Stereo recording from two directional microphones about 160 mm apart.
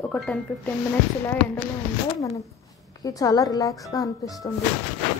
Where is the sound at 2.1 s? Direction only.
20° left (ahead or behind).